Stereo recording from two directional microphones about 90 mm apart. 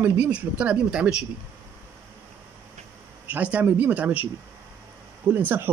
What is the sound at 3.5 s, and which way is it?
Speech, 20° right (ahead or behind).